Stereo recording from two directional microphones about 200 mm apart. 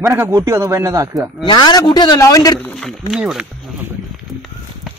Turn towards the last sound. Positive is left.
turn(degrees=-5)  # may be behind; listen again after turning